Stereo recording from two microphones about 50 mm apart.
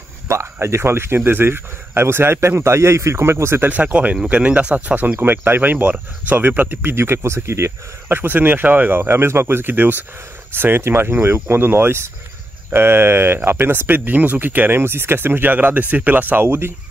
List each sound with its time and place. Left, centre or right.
0.3 s speech: right
3.6 s speech: right
8.2 s speech: right
16.4 s speech: right